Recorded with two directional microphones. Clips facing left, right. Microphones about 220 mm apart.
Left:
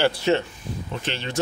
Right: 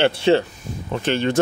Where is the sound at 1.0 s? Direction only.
50° right (ahead or behind).